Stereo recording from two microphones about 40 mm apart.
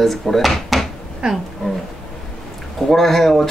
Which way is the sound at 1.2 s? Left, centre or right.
Right.